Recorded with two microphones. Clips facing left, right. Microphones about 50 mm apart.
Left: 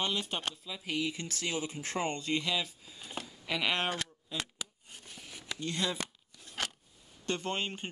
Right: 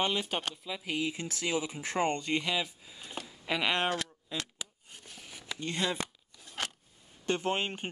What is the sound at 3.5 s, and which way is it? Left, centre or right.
Speech, centre.